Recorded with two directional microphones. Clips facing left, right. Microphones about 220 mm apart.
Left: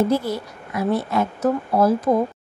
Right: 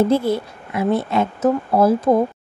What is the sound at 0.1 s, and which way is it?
A woman's voice, 25° right (ahead or behind).